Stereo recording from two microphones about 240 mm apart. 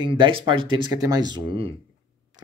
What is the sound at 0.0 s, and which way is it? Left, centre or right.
Speech, right.